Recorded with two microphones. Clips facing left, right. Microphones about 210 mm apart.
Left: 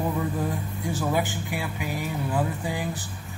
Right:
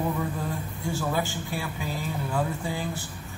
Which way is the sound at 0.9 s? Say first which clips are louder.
Left 2 dB; 20° left (ahead or behind).